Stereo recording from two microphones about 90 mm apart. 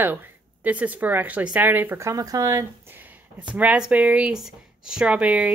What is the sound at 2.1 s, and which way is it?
Speech, 40° right (ahead or behind).